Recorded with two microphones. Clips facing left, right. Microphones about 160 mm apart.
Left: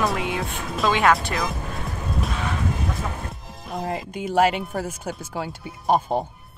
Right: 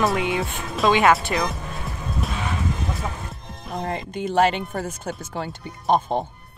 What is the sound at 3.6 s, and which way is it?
Speech, 5° left (ahead or behind).